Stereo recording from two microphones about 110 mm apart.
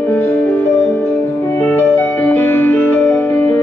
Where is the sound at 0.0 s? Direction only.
20° left (ahead or behind).